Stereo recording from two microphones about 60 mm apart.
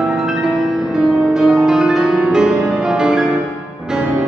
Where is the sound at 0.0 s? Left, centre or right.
Centre.